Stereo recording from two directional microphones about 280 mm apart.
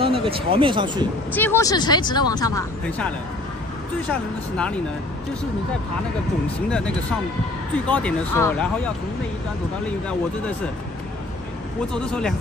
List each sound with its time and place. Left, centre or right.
0.0 s speech: centre
1.3 s speech: centre
4.1 s speech: centre
7.8 s speech: centre
11.9 s speech: centre